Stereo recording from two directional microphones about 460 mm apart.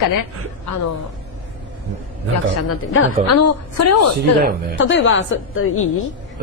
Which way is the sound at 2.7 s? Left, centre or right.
Left.